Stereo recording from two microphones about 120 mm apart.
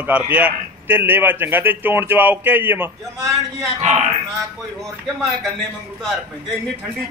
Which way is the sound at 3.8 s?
65° right (ahead or behind).